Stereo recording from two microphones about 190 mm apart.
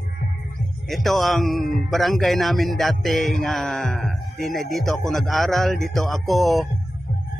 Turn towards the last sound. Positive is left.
turn(degrees=0)  # may be behind; listen again after turning